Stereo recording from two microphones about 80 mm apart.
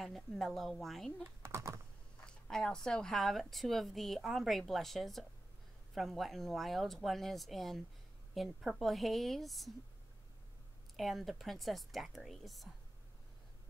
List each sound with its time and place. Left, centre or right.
0.0 s speech: centre
1.4 s typing: right
2.2 s speech: centre
11.0 s speech: centre